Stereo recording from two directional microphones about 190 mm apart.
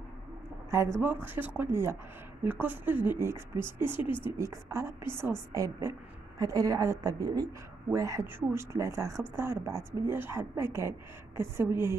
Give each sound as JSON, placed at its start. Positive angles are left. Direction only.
{"t": 0.7, "sound": "a woman's voice", "side_deg": -15}
{"t": 4.0, "sound": "speech", "side_deg": 25}
{"t": 4.4, "sound": "a woman's voice", "side_deg": -15}